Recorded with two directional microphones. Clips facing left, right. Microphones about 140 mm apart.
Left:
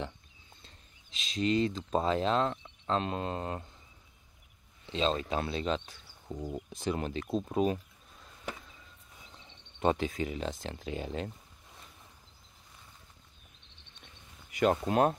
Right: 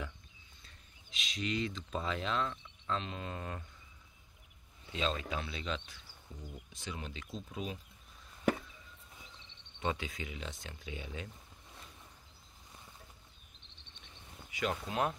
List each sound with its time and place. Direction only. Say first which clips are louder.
0.7 s speech: left 1 dB; 35° left (ahead or behind)
3.3 s speech: left 6 dB; 35° left (ahead or behind)
4.8 s speech: left 6 dB; 30° left (ahead or behind); by 7.8 s 55° left (ahead or behind)
8.5 s chop: right 10 dB; 55° right (ahead or behind)
9.8 s speech: left 8 dB; 40° left (ahead or behind)
14.6 s speech: left 8 dB; 45° left (ahead or behind)